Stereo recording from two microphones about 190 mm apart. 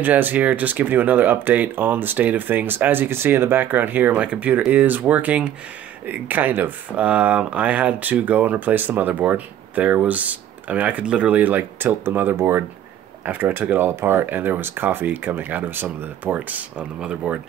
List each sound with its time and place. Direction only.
0.0 s speech: 10° right (ahead or behind)